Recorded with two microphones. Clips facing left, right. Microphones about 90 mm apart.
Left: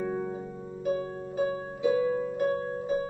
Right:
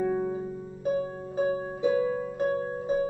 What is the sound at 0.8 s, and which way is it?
Harp, 25° right (ahead or behind).